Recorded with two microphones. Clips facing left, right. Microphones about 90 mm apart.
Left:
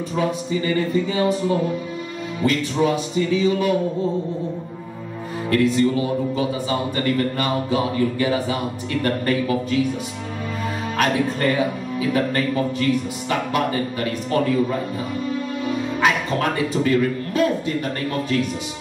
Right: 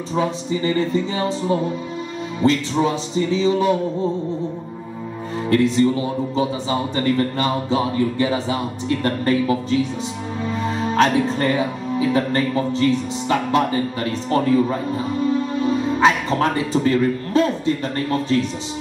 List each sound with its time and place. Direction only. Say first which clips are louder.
0.1 s a man's voice: right 2 dB; 30° right (ahead or behind)
5.5 s a man's voice: right 1 dB; 25° right (ahead or behind)
11.0 s a man's voice: right 3 dB; 25° right (ahead or behind)